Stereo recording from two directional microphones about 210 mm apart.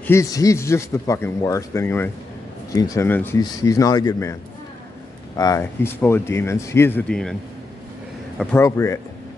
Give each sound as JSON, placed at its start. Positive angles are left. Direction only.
{"t": 0.0, "sound": "speech", "side_deg": 15}
{"t": 8.4, "sound": "speech", "side_deg": 10}